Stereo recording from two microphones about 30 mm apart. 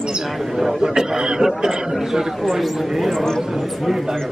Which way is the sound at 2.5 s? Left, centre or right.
Centre.